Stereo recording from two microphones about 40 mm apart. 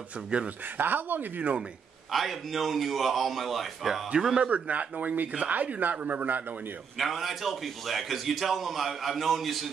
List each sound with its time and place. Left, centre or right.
0.7 s speech: right
2.1 s a man's voice: centre
4.1 s speech: right
4.5 s speech: right
7.0 s a man's voice: centre